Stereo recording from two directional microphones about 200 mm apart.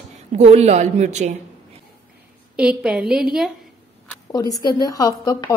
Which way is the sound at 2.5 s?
5° right (ahead or behind).